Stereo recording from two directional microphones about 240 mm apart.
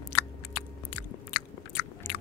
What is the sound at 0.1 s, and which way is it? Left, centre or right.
Biting, left.